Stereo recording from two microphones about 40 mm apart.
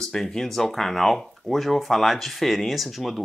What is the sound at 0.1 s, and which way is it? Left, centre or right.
Speech, centre.